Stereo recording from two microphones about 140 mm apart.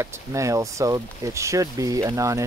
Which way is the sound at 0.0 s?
20° right (ahead or behind).